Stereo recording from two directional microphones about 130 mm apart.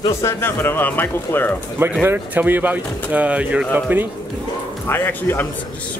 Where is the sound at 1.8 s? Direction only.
15° right (ahead or behind).